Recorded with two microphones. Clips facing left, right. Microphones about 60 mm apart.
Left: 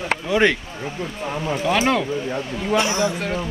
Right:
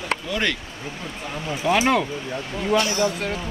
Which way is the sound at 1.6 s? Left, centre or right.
Centre.